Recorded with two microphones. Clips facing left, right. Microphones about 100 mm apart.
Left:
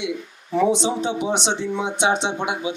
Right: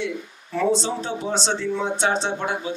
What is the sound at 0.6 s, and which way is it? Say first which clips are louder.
Speech: left 3 dB; 15° left (ahead or behind).